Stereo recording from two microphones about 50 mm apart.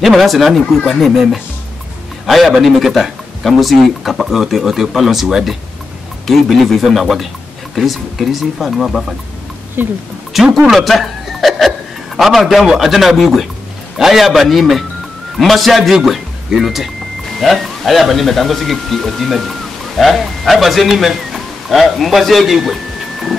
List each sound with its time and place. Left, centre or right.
0.0 s speech: centre
9.8 s speech: right
10.3 s speech: centre